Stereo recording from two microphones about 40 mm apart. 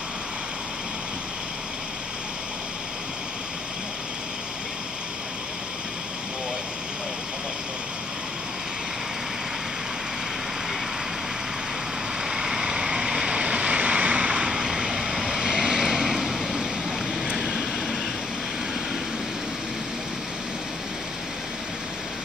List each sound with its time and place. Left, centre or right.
12.3 s vehicle: centre